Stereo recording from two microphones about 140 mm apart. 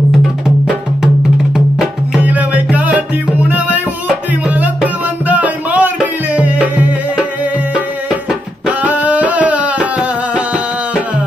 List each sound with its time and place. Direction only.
0.7 s music: 5° right (ahead or behind)